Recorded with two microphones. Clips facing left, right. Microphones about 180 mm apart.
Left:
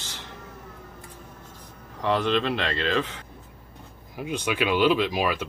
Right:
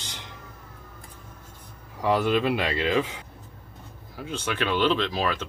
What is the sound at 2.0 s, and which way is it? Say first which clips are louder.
Speech: right 1 dB; 10° right (ahead or behind).